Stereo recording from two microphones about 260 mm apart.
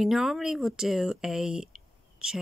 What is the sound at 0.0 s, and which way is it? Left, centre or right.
Speech, centre.